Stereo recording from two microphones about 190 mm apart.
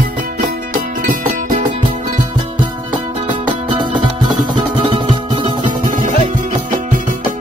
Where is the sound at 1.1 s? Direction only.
40° right (ahead or behind).